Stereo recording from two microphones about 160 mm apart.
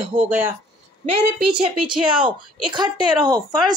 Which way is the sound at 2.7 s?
30° right (ahead or behind).